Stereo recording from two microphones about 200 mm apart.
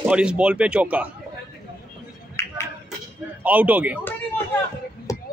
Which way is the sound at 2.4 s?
15° left (ahead or behind).